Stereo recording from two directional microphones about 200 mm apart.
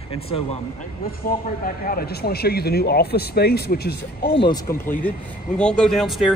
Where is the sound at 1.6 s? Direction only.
45° left (ahead or behind).